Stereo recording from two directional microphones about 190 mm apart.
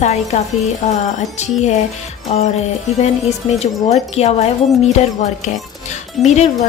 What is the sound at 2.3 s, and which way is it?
Speech, 35° left (ahead or behind).